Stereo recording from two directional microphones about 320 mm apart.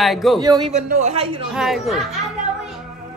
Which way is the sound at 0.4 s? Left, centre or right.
Centre.